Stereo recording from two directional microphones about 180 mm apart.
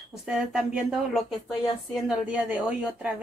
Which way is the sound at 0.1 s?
Centre (ahead or behind).